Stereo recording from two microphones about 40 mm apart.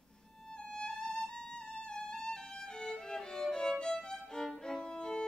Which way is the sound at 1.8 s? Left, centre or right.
Left.